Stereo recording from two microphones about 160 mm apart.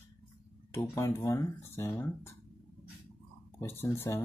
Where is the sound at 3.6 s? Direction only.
15° left (ahead or behind).